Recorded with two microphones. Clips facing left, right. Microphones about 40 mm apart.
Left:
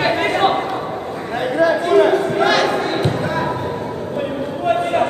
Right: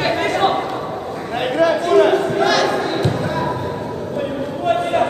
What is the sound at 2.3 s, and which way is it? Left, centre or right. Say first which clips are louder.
Basketball bounce: left 1 dB; centre.